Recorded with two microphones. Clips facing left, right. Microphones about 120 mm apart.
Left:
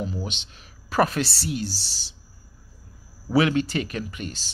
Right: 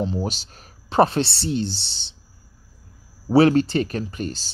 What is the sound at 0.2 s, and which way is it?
Speech, 40° right (ahead or behind).